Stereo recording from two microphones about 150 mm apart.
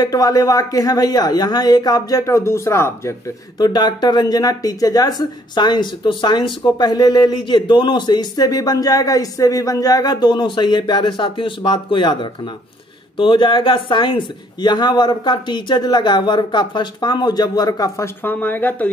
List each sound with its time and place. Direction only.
0.0 s speech: 25° left (ahead or behind)